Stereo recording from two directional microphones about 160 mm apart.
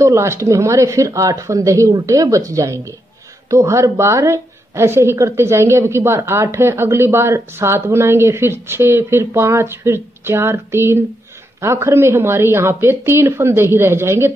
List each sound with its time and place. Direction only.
0.0 s a woman's voice: 15° right (ahead or behind)